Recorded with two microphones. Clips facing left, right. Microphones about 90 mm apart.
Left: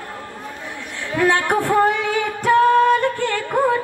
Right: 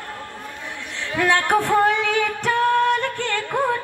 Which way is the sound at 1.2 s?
20° left (ahead or behind).